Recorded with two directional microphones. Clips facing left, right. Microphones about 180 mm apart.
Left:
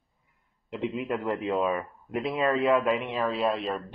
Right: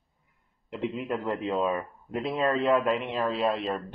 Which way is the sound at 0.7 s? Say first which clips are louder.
Left 1 dB; 5° left (ahead or behind).